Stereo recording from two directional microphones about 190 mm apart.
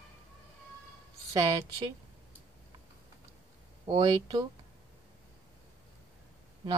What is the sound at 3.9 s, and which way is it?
Speech, 20° right (ahead or behind).